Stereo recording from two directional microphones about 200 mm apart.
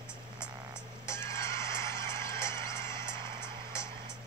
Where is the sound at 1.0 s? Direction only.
15° left (ahead or behind).